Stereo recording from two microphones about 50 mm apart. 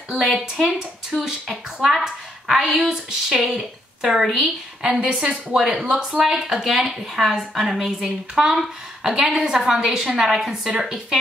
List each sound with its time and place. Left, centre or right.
0.1 s a woman's voice: centre